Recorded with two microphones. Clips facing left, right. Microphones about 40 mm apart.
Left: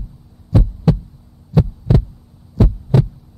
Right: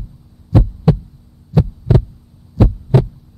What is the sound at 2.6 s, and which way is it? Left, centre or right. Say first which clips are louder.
Hum: right 2 dB; centre.